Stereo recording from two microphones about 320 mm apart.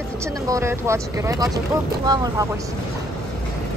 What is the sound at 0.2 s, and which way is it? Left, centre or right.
Speech, centre.